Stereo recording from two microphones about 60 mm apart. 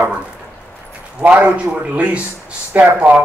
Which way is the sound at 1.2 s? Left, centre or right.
Right.